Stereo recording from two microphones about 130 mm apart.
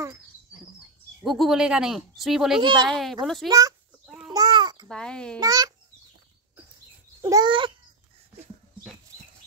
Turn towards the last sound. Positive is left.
turn(degrees=-25)  # may be behind; listen again after turning